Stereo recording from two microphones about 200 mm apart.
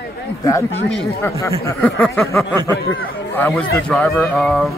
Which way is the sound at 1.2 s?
15° left (ahead or behind).